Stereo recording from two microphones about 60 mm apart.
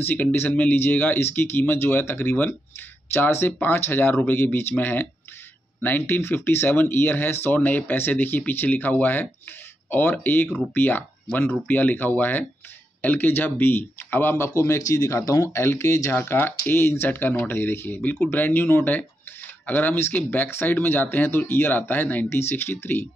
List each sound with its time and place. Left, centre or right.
0.0 s speech: left
14.5 s a man's voice: left
15.4 s speech: left
15.8 s a man's voice: left
16.1 s speech: left